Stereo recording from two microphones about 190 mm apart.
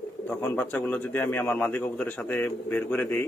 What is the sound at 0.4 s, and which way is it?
A man's voice, 10° left (ahead or behind).